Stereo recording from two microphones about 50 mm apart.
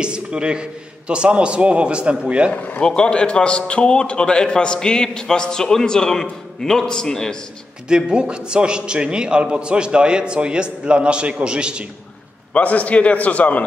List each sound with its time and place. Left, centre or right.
0.0 s a man's voice: centre
2.5 s speech: left
2.8 s a man's voice: centre
7.9 s a man's voice: centre
12.5 s a man's voice: left